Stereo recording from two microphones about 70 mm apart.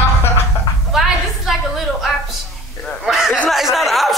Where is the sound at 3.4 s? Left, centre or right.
Centre.